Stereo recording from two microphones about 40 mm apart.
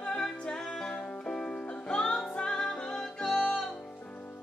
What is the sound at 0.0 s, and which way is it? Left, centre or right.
Music, centre.